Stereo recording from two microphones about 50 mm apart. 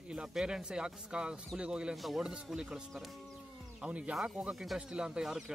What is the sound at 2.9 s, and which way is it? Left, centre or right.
Speech, centre.